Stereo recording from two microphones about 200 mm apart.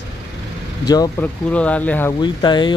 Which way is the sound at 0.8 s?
20° left (ahead or behind).